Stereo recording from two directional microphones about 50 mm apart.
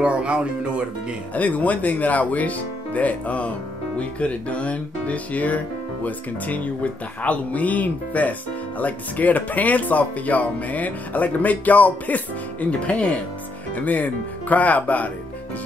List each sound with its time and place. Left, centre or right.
0.0 s speech: right
1.3 s speech: left